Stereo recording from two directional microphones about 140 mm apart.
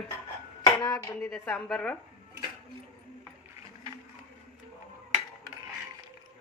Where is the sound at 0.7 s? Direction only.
25° left (ahead or behind).